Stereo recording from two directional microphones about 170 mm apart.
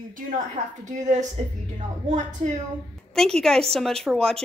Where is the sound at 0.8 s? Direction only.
45° right (ahead or behind).